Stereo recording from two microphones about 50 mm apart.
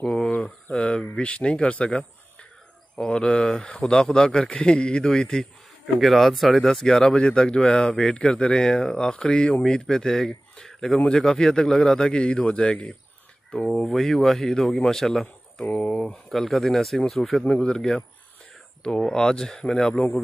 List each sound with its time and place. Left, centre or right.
0.0 s speech: centre
0.7 s a sound: centre
1.1 s speech: left
3.1 s speech: centre
5.9 s speech: centre
6.6 s speech: centre
9.6 s speech: centre
13.5 s speech: centre
17.5 s speech: centre